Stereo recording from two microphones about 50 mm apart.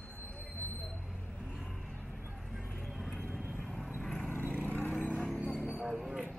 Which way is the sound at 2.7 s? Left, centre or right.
Centre.